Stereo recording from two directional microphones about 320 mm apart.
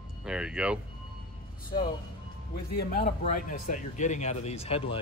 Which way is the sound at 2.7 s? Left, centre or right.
Left.